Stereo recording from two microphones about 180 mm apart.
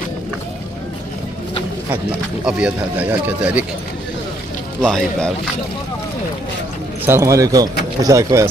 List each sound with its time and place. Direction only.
2.4 s speech: 5° right (ahead or behind)
4.8 s speech: centre (ahead or behind)
7.1 s speech: 15° right (ahead or behind)